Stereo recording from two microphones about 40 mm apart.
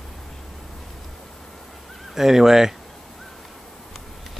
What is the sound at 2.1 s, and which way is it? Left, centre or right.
Speech, centre.